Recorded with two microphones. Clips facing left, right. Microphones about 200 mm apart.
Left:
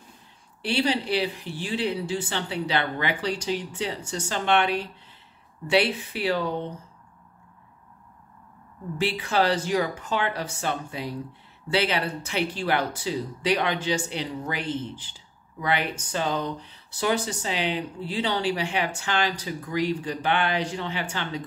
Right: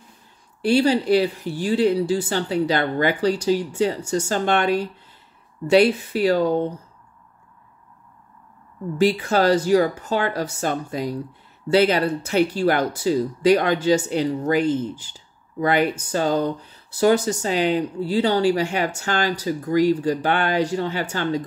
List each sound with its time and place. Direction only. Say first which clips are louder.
0.6 s speech: right 7 dB; 45° right (ahead or behind)
8.9 s speech: right 6 dB; 40° right (ahead or behind)